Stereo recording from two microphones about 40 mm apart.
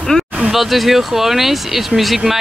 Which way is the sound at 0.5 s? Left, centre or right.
Centre.